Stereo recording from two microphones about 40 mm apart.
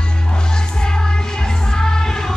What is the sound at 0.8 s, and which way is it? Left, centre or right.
Music, centre.